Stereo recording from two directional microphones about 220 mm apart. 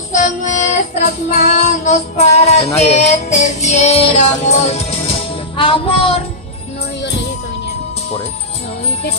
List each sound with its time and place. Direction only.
0.1 s child singing: 35° left (ahead or behind)
2.8 s music: 30° left (ahead or behind)